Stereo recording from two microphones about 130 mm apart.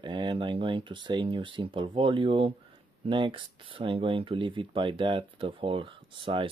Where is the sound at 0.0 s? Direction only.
35° right (ahead or behind).